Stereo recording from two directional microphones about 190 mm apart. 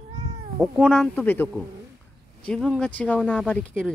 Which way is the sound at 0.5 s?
5° right (ahead or behind).